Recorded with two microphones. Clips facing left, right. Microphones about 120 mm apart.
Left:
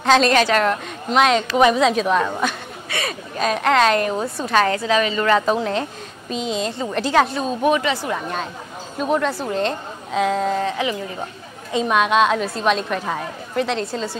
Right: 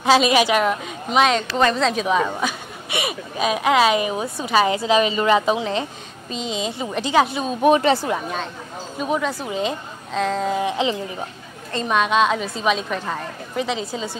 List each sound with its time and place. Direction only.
0.0 s a woman's voice: 10° right (ahead or behind)
7.8 s speech: 30° right (ahead or behind)
8.9 s a woman's voice: centre (ahead or behind)
10.6 s speech: 20° right (ahead or behind)
11.7 s a woman's voice: centre (ahead or behind)